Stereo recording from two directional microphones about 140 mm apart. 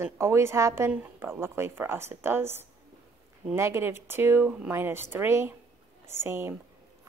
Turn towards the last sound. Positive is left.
turn(degrees=-15)  # may be behind; listen again after turning